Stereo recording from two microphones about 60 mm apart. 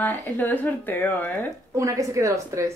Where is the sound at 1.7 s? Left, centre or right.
Right.